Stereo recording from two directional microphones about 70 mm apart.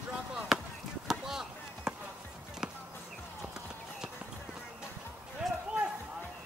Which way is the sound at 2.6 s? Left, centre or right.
Centre.